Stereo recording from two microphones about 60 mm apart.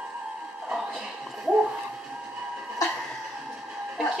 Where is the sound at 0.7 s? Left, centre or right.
Centre.